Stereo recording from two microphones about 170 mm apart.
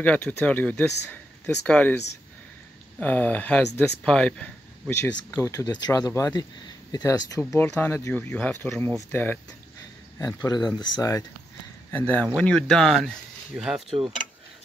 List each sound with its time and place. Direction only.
0.0 s speech: 10° left (ahead or behind)
3.0 s speech: 10° left (ahead or behind)